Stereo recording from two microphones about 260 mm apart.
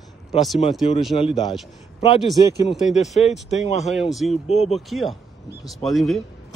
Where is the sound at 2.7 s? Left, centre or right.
Centre.